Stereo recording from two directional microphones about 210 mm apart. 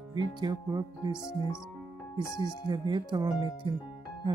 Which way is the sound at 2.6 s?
20° right (ahead or behind).